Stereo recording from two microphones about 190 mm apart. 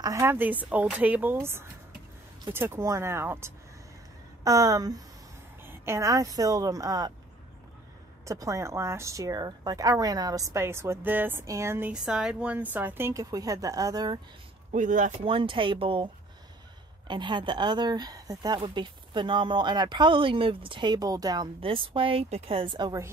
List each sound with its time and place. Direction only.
0.0 s a woman's voice: 15° right (ahead or behind)
8.3 s a woman's voice: 15° right (ahead or behind)
14.7 s speech: 40° right (ahead or behind)
15.2 s speech: 25° right (ahead or behind)
17.1 s speech: 25° right (ahead or behind)